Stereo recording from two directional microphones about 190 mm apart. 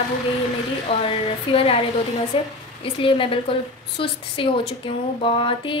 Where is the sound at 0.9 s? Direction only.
30° left (ahead or behind).